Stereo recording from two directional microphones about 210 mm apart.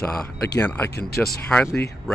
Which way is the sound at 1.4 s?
5° left (ahead or behind).